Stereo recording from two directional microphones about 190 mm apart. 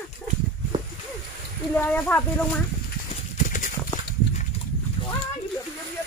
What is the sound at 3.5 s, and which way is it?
Clip-clop, 45° left (ahead or behind).